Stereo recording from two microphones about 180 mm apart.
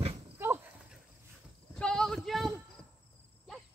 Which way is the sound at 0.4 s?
15° right (ahead or behind).